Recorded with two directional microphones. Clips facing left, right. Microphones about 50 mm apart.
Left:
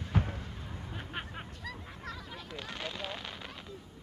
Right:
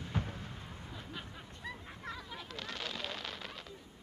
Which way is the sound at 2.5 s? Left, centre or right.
Centre.